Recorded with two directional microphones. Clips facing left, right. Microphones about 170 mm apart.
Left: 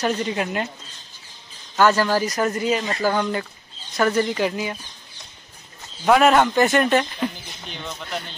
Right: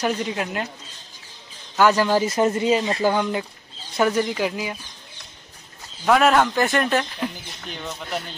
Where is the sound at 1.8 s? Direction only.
15° right (ahead or behind).